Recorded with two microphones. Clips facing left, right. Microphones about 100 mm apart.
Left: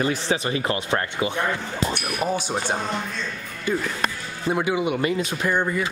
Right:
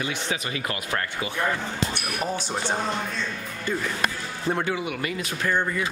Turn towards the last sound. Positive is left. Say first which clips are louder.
# left 2 dB
turn(degrees=15)  # may be behind; listen again after turning